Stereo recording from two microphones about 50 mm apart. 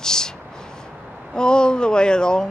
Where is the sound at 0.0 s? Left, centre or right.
Centre.